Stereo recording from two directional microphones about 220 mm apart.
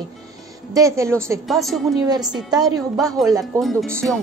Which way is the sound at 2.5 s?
20° right (ahead or behind).